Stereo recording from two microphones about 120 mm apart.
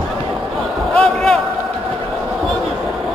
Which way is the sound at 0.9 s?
5° left (ahead or behind).